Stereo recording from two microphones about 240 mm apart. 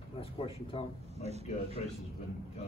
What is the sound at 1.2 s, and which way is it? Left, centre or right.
Speech, right.